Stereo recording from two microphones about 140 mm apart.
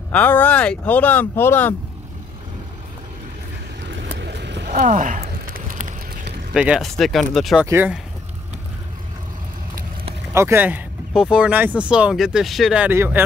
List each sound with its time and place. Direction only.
0.1 s speech: 10° left (ahead or behind)
4.7 s a sound: 65° right (ahead or behind); by 5.9 s 80° right
6.5 s speech: 5° right (ahead or behind)
7.6 s speech: 15° right (ahead or behind)
10.3 s speech: 15° right (ahead or behind)